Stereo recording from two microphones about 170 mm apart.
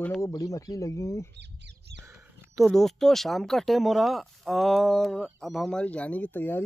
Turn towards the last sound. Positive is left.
turn(degrees=10)  # may be behind; listen again after turning